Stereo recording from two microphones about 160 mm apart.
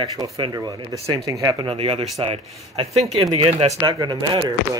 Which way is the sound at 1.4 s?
20° right (ahead or behind).